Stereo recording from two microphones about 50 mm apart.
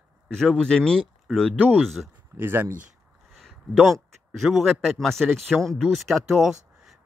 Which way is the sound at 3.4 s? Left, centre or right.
Centre.